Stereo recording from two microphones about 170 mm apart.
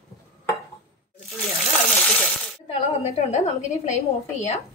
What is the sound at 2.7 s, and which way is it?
A woman's voice, 40° left (ahead or behind).